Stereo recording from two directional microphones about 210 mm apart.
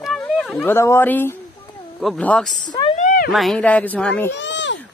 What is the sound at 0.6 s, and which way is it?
Speech, 10° left (ahead or behind).